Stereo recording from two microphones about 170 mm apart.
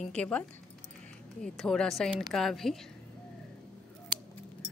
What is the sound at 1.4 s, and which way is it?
Speech, 5° left (ahead or behind).